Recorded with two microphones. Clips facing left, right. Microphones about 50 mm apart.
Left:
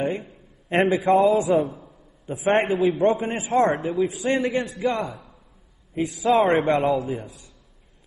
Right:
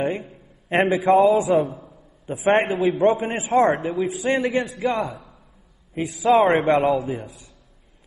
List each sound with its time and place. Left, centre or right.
0.7 s a man's voice: centre